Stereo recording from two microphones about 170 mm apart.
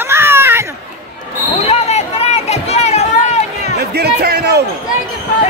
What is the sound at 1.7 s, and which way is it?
Run, 40° left (ahead or behind).